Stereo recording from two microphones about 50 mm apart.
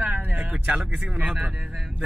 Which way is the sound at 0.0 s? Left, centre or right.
Right.